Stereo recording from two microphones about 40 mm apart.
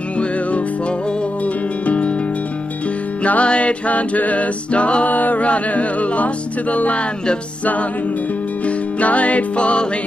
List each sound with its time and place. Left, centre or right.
0.2 s music: left
3.3 s music: left
5.1 s music: left
8.6 s music: left